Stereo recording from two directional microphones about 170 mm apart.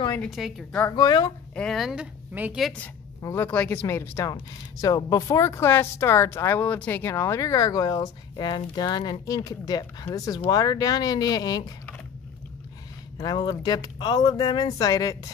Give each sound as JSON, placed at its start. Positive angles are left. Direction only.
{"t": 0.2, "sound": "a woman's voice", "side_deg": 0}
{"t": 0.9, "sound": "speech", "side_deg": 25}
{"t": 1.5, "sound": "a woman's voice", "side_deg": 5}
{"t": 3.2, "sound": "speech", "side_deg": 15}
{"t": 13.2, "sound": "speech", "side_deg": 25}